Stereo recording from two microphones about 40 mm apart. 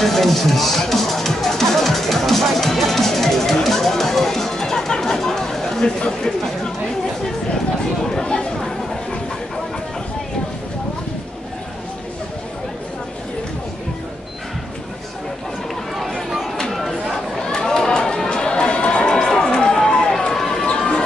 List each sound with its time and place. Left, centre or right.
0.0 s music: centre
5.9 s speech: left
8.1 s chatter: centre
16.9 s chatter: centre
20.2 s run: centre
20.6 s run: left